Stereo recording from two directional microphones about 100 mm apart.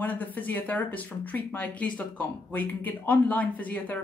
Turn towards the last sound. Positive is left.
turn(degrees=15)  # may be behind; listen again after turning